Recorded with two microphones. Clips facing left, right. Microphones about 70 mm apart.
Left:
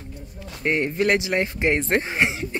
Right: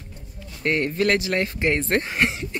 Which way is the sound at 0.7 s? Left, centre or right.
Centre.